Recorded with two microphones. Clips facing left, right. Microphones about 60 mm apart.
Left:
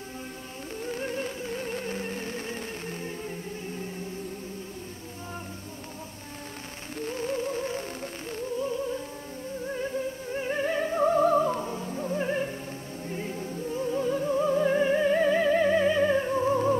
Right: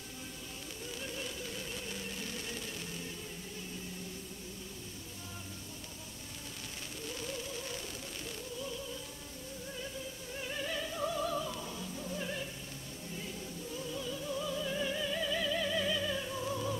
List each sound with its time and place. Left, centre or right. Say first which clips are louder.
0.8 s music: left 11 dB; left
7.0 s music: left 12 dB; left